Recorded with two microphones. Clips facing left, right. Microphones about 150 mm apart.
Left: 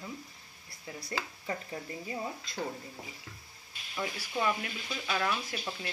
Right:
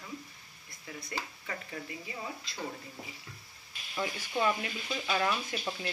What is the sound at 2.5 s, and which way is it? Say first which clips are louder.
Speech: left 4 dB; 50° left (ahead or behind).